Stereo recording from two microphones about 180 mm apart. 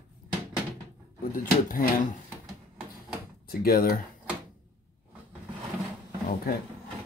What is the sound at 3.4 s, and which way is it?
Speech, 55° left (ahead or behind).